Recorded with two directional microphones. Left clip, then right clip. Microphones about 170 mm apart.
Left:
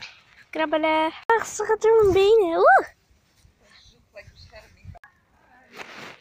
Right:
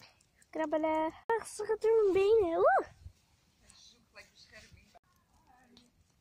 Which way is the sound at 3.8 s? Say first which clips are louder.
Left 10 dB; 30° right (ahead or behind).